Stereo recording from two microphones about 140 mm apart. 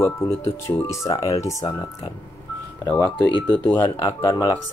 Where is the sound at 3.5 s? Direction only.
10° left (ahead or behind).